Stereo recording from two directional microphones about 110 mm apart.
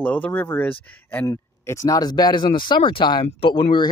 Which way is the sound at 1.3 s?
30° left (ahead or behind).